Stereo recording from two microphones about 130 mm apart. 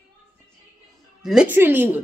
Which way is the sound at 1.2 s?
5° right (ahead or behind).